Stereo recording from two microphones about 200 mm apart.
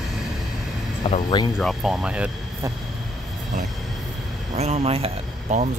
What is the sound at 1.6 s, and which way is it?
Speech, centre (ahead or behind).